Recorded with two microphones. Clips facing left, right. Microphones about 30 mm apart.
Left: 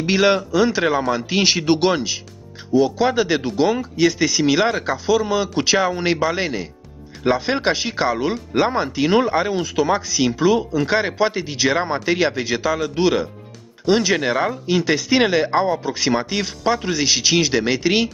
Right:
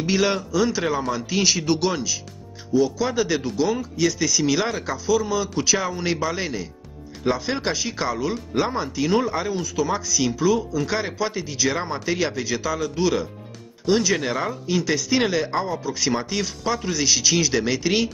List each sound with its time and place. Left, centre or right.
0.0 s speech: left